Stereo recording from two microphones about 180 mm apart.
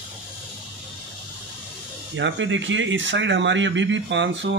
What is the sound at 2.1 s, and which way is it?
Speech, 90° right.